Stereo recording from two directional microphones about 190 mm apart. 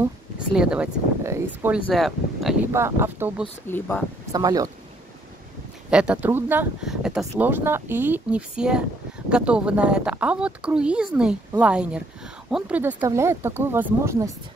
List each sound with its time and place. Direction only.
0.0 s speech: 5° right (ahead or behind)
1.9 s speech: centre (ahead or behind)
2.7 s speech: 15° right (ahead or behind)
3.6 s speech: 10° left (ahead or behind)
4.3 s speech: 20° right (ahead or behind)
5.9 s speech: 5° right (ahead or behind)